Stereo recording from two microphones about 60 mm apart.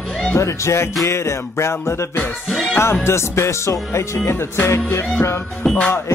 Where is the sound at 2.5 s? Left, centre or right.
Centre.